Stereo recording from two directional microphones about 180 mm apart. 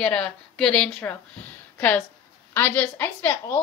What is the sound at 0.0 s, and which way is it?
A woman's voice, 5° left (ahead or behind).